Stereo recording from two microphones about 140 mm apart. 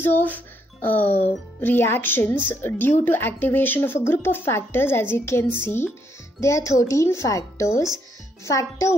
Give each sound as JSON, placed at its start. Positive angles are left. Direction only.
{"t": 0.1, "sound": "speech", "side_deg": 10}